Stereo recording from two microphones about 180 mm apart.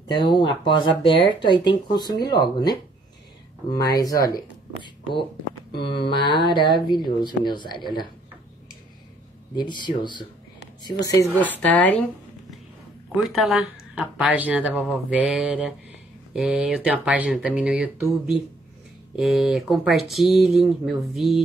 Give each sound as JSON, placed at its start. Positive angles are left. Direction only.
{"t": 0.1, "sound": "speech", "side_deg": 25}
{"t": 5.8, "sound": "speech", "side_deg": 25}
{"t": 9.6, "sound": "speech", "side_deg": 25}